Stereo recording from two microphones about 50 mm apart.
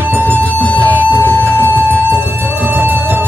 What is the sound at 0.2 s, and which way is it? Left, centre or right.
Music, left.